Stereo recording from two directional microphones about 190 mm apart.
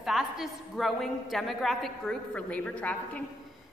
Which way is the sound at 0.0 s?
Centre (ahead or behind).